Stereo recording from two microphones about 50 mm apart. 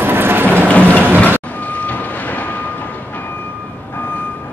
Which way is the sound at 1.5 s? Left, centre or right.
Left.